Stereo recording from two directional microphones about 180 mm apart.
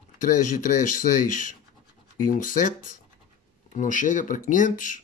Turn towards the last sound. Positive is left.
turn(degrees=45)  # may be behind; listen again after turning